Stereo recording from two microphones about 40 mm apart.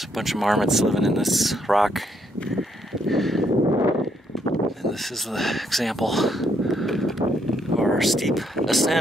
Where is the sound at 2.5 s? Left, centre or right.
Centre.